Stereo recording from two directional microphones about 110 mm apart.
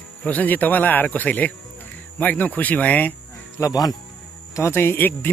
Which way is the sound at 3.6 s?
35° left (ahead or behind).